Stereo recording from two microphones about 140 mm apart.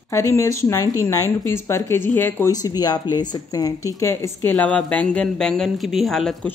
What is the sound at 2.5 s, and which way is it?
Speech, 25° left (ahead or behind).